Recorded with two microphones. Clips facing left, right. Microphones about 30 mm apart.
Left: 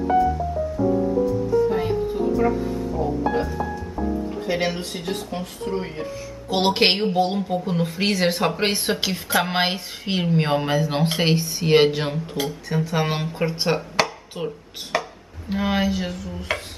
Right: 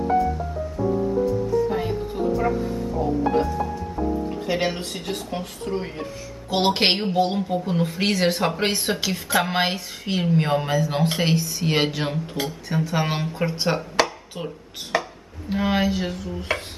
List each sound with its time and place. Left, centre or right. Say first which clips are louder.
1.7 s music: left 2 dB; centre
2.3 s speech: left 2 dB; centre
5.3 s speech: left 1 dB; centre